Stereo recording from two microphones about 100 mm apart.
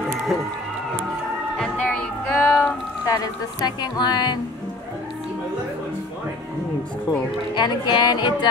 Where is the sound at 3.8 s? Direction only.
45° left (ahead or behind).